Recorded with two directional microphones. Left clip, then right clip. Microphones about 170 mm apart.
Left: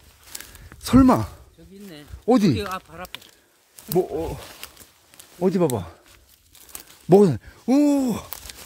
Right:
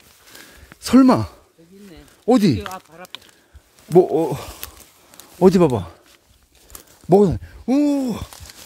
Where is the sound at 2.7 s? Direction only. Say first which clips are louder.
Left 3 dB; 90° left.